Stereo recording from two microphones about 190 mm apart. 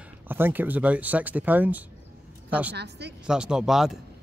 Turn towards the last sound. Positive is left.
turn(degrees=0)  # may be behind; listen again after turning